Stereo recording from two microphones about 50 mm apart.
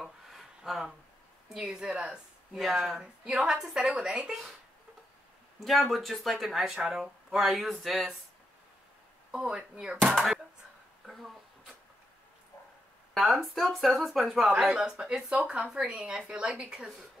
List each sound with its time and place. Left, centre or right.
0.0 s a sound: centre
1.5 s a woman's voice: centre
5.6 s speech: centre
9.3 s a woman's voice: centre
11.1 s speech: centre
13.1 s speech: centre
14.7 s a woman's voice: centre